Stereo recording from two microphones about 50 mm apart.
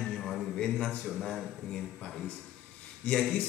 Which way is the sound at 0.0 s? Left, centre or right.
Centre.